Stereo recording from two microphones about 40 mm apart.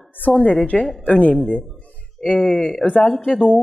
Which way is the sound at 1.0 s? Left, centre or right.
Left.